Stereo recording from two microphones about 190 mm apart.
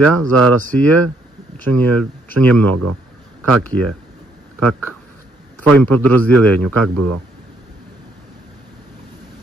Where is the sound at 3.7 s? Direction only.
75° right (ahead or behind).